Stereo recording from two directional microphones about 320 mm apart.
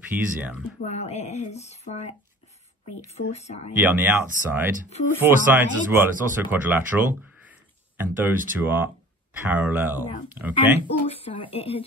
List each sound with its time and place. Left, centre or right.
0.1 s speech: centre
0.8 s speech: centre
3.3 s speech: left
3.8 s speech: centre
11.1 s speech: centre